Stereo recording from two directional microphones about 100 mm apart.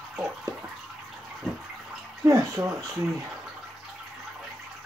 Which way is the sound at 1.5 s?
Centre (ahead or behind).